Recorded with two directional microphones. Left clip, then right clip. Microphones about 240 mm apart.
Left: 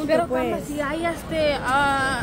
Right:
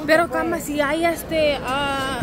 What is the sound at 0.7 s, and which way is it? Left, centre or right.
Speech, right.